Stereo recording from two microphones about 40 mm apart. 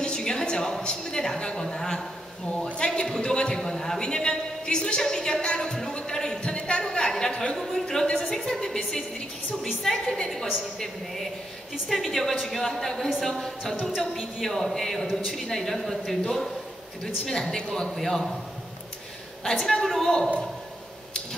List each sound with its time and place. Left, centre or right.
0.0 s a sound: left
1.4 s a man's voice: left
2.5 s a man's voice: left
7.5 s a woman's voice: centre
10.2 s a woman's voice: centre
11.9 s a woman's voice: centre
19.6 s a woman's voice: centre
20.0 s a man's voice: centre